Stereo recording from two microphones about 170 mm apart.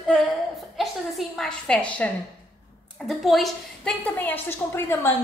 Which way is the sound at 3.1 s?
Centre (ahead or behind).